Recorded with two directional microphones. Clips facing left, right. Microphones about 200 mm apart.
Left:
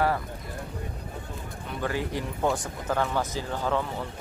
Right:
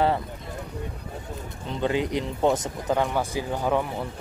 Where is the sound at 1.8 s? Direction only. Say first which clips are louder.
Right 5 dB; 20° right (ahead or behind).